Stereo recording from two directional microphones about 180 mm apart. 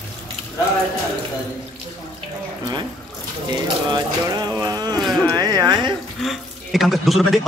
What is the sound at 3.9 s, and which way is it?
Speech, 20° right (ahead or behind).